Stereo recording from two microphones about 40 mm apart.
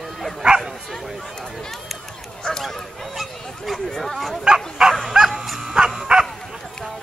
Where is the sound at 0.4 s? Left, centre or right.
Right.